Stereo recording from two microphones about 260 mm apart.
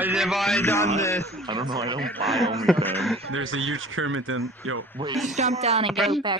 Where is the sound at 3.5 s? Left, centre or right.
Right.